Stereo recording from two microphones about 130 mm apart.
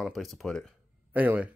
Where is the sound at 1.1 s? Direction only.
15° right (ahead or behind).